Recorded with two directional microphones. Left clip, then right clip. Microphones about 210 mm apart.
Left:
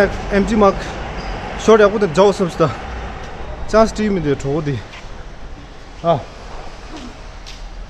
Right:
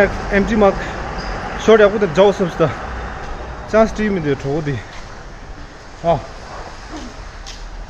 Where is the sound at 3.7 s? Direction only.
20° left (ahead or behind).